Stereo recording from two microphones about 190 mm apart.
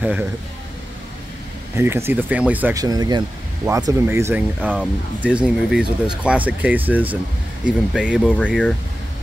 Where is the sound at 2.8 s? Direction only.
20° right (ahead or behind); by 8.3 s 5° right (ahead or behind).